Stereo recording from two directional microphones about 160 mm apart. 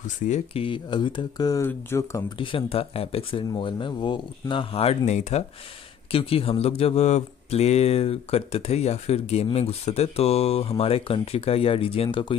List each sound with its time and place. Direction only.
0.3 s speech: 35° left (ahead or behind); by 2.2 s 15° left (ahead or behind)
2.3 s speech: 35° left (ahead or behind)